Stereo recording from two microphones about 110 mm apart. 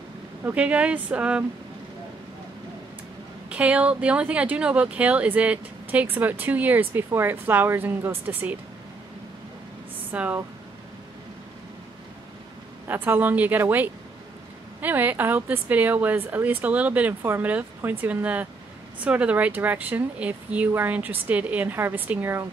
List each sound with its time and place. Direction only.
0.4 s speech: 15° right (ahead or behind)
3.4 s speech: 10° right (ahead or behind)
10.1 s speech: 15° right (ahead or behind)
12.8 s speech: 20° right (ahead or behind)